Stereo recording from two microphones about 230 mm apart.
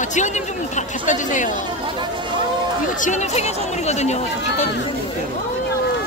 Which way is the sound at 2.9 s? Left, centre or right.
Left.